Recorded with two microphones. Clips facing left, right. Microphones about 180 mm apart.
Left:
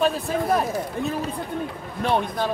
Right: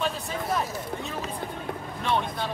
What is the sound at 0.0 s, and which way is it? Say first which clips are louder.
Speech: left 8 dB; 55° left (ahead or behind).